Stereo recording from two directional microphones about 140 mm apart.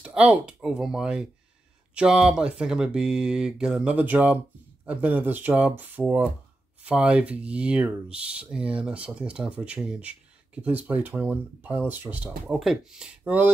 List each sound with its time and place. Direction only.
0.0 s speech: 10° right (ahead or behind)
12.3 s speech: centre (ahead or behind)